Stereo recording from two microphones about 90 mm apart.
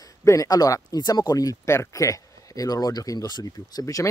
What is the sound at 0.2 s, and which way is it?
Speech, 40° left (ahead or behind).